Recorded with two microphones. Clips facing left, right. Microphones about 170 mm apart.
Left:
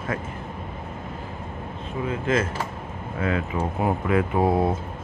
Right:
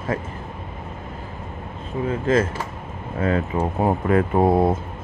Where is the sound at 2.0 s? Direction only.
35° right (ahead or behind).